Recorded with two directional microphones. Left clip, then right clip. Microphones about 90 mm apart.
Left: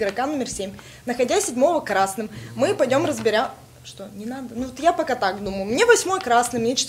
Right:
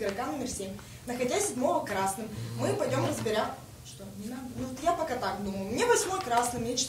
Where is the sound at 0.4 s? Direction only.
50° left (ahead or behind).